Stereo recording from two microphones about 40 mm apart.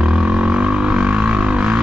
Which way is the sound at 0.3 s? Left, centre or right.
Right.